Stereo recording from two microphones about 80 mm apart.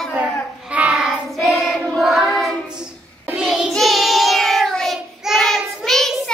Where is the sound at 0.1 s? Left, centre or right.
Centre.